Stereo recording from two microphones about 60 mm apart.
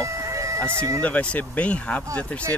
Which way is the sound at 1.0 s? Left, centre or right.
Left.